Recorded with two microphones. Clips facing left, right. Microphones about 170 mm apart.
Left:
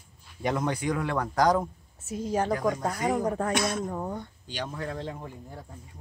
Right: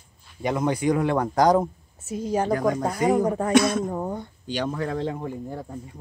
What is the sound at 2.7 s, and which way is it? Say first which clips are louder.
Speech: right 5 dB; 10° right (ahead or behind).